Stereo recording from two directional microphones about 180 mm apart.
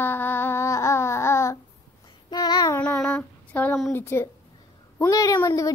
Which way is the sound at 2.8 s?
10° left (ahead or behind).